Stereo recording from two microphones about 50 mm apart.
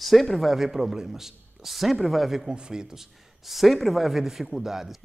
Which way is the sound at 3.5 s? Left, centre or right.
Centre.